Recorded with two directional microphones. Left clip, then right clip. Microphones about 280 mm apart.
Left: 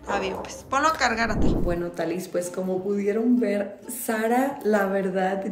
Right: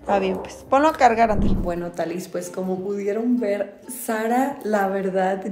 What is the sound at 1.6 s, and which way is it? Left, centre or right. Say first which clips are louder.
Speech: right 1 dB; centre.